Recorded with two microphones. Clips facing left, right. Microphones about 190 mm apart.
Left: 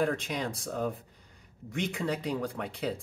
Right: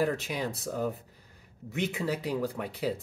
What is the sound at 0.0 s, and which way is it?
Speech, 5° right (ahead or behind).